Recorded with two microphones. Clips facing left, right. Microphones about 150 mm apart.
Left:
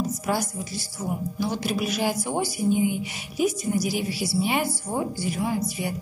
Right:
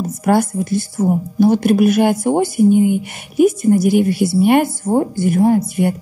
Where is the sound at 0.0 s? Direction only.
55° right (ahead or behind).